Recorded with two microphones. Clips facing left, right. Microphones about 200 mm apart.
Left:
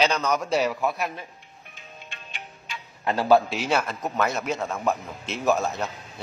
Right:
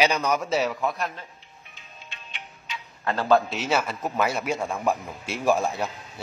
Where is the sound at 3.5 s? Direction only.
Centre (ahead or behind).